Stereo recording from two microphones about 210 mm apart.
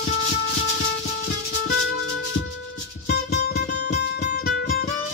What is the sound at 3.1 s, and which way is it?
Music, 50° left (ahead or behind).